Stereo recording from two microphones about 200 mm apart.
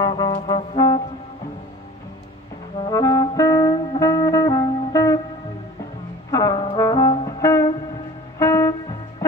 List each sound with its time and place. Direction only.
0.0 s brass instrument: 20° left (ahead or behind)
0.7 s music: 20° left (ahead or behind)
2.8 s music: 15° left (ahead or behind)
6.3 s brass instrument: 20° left (ahead or behind)
8.4 s music: 15° left (ahead or behind)